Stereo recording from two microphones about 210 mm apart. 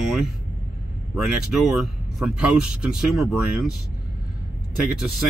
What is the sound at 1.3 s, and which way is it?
Speech, centre (ahead or behind).